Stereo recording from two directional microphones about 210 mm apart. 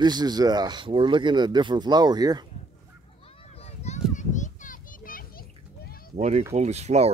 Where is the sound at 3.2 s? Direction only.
25° left (ahead or behind); by 6.1 s 45° left (ahead or behind).